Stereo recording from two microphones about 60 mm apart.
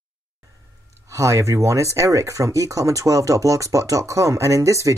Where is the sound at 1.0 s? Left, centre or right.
Right.